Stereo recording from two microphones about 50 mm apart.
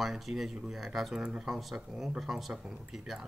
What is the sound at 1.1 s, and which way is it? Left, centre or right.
Speech, centre.